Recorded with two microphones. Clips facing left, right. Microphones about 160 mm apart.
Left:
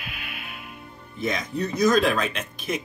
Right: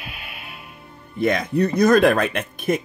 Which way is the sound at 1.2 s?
60° right (ahead or behind).